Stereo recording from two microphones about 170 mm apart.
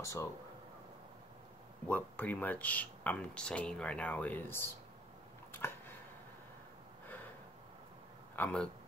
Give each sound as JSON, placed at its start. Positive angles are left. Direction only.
{"t": 0.0, "sound": "speech", "side_deg": 15}
{"t": 1.9, "sound": "speech", "side_deg": 10}
{"t": 5.5, "sound": "a sound", "side_deg": 15}
{"t": 8.4, "sound": "speech", "side_deg": 10}